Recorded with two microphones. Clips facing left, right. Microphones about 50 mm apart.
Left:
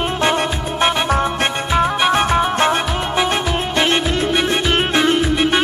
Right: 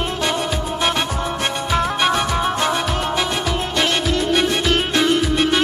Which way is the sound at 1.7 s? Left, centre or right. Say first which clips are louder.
Left 2 dB; centre.